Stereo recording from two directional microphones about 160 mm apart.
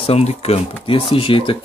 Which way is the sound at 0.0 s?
40° left (ahead or behind).